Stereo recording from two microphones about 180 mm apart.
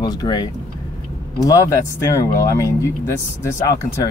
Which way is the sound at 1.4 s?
15° left (ahead or behind).